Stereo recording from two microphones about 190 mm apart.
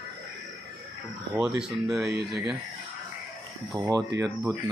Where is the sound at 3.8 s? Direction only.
20° right (ahead or behind).